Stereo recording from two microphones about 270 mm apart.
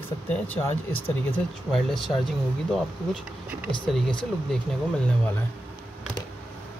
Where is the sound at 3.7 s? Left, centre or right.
Centre.